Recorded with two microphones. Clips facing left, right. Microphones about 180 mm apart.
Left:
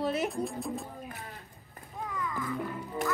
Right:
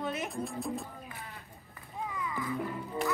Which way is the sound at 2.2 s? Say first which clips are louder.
Left 1 dB; 5° right (ahead or behind).